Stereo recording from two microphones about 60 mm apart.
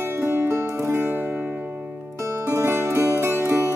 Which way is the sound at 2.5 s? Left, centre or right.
Right.